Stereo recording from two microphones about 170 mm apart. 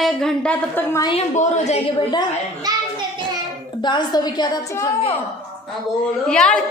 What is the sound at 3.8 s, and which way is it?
A woman's voice, 25° left (ahead or behind).